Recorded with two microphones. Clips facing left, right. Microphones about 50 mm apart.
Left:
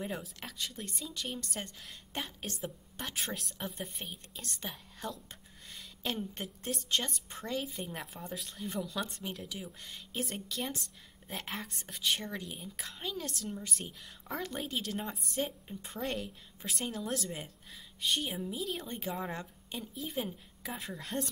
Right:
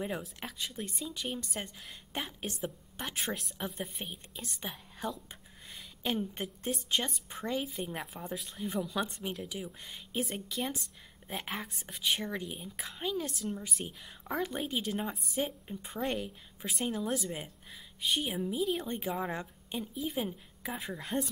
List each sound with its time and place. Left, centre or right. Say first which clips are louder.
0.2 s speech: right 1 dB; centre
9.3 s speech: right 3 dB; centre